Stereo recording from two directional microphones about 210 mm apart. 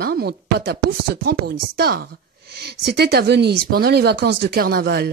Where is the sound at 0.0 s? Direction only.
50° right (ahead or behind).